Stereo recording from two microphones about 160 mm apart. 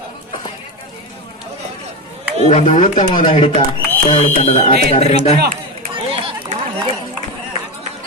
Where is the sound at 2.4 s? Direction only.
50° left (ahead or behind).